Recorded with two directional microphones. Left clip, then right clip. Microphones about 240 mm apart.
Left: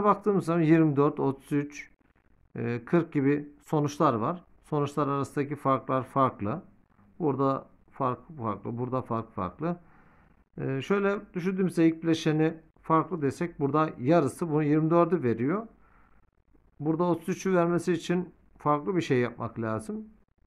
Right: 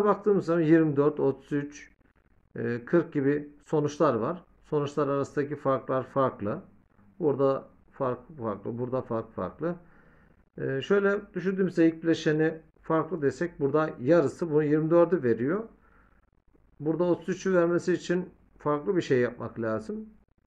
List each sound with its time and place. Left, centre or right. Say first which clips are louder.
0.0 s speech: right 1 dB; left
16.8 s speech: right 1 dB; left